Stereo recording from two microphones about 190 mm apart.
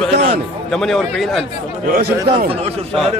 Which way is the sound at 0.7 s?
Centre (ahead or behind).